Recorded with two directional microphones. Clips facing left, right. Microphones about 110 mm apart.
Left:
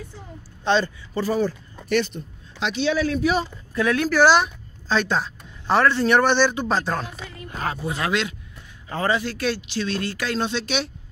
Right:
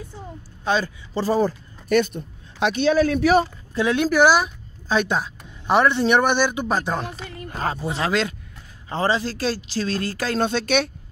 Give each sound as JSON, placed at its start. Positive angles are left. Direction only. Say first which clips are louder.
{"t": 0.7, "sound": "a man's voice", "louder": "left 2 dB", "side_deg": -5}
{"t": 1.1, "sound": "speech", "louder": "right 2 dB", "side_deg": -35}
{"t": 3.2, "sound": "speech", "louder": "right 5 dB", "side_deg": -65}
{"t": 3.7, "sound": "speech", "louder": "right 1 dB", "side_deg": -20}
{"t": 7.5, "sound": "speech", "louder": "right 2 dB", "side_deg": -30}